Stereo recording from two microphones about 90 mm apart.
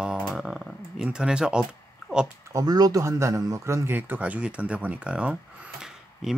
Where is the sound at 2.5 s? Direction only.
45° right (ahead or behind).